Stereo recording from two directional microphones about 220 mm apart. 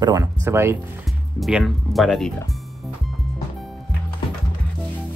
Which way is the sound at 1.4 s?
Centre (ahead or behind).